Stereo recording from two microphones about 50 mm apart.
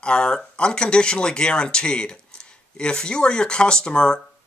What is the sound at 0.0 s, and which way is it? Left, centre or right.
Speech, centre.